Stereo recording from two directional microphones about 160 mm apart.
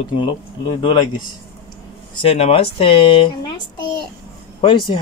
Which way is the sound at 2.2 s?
35° left (ahead or behind).